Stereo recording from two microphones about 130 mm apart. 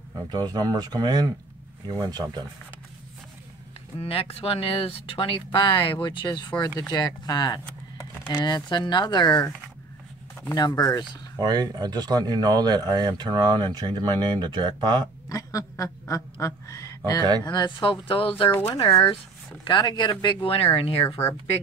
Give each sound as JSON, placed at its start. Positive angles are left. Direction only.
{"t": 0.3, "sound": "speech", "side_deg": -30}
{"t": 4.0, "sound": "speech", "side_deg": 50}
{"t": 10.5, "sound": "speech", "side_deg": 30}
{"t": 11.3, "sound": "speech", "side_deg": -30}
{"t": 15.2, "sound": "speech", "side_deg": 25}
{"t": 17.5, "sound": "speech", "side_deg": 35}
{"t": 18.8, "sound": "speech", "side_deg": 30}